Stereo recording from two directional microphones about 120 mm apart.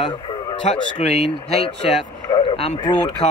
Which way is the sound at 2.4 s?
55° left (ahead or behind).